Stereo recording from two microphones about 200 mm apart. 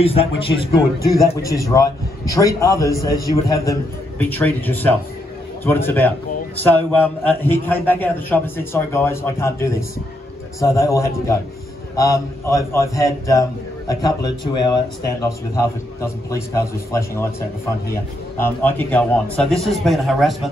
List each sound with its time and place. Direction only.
0.0 s a man's voice: 30° left (ahead or behind)
1.2 s a man's voice: 15° left (ahead or behind)
18.4 s a man's voice: 10° left (ahead or behind)